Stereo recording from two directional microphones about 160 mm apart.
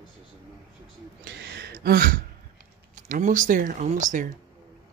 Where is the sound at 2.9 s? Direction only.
55° right (ahead or behind).